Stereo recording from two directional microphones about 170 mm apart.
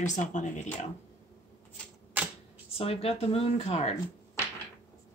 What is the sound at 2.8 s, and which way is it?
Speech, 35° left (ahead or behind).